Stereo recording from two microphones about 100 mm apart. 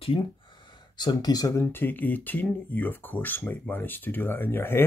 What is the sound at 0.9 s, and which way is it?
Speech, 45° left (ahead or behind).